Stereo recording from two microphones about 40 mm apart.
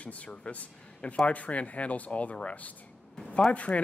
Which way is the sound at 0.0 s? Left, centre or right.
Left.